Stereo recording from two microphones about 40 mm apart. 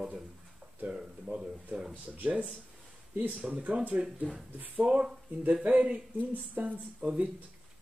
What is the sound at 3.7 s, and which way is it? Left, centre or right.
Speech, right.